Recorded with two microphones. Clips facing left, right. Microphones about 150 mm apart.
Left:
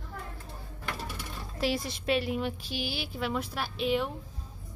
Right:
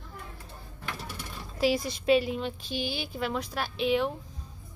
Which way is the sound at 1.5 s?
Centre (ahead or behind).